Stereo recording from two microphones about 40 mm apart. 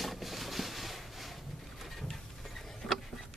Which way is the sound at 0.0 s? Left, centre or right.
Centre.